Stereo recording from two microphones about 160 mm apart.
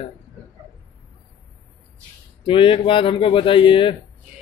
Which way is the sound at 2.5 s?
35° left (ahead or behind).